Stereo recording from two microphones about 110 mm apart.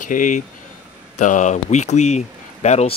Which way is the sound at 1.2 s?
90° left.